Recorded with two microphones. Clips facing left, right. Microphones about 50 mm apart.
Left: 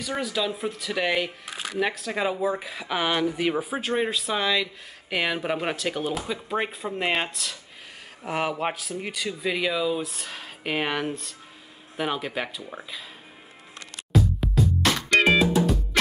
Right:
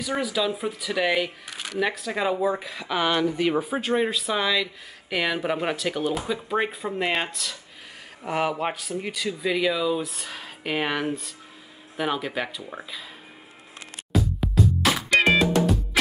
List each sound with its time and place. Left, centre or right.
0.0 s speech: centre
14.1 s music: centre